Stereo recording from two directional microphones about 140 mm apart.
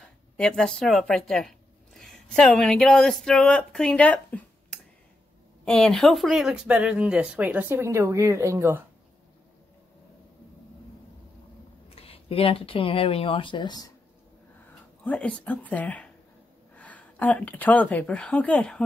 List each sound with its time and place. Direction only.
0.4 s a woman's voice: 5° left (ahead or behind); by 8.8 s 15° right (ahead or behind)
11.9 s speech: 45° left (ahead or behind)
15.0 s speech: 10° left (ahead or behind)